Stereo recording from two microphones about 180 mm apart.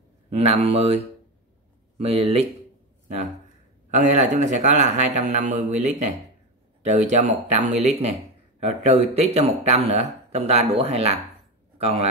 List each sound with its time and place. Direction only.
0.3 s speech: 35° right (ahead or behind)
3.9 s speech: 40° right (ahead or behind)